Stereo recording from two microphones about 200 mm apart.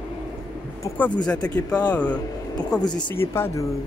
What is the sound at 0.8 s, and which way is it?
Speech, 10° left (ahead or behind).